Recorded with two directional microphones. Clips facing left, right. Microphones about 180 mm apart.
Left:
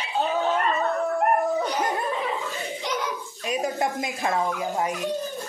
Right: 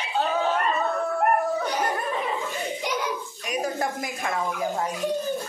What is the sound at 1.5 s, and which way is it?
Dog, 20° left (ahead or behind).